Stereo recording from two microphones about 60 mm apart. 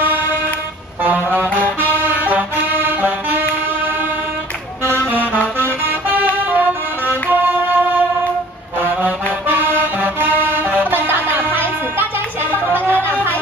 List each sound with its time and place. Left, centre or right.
1.0 s music: right
5.1 s music: right
9.0 s music: right